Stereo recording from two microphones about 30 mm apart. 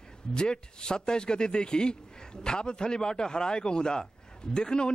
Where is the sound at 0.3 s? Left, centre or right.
Left.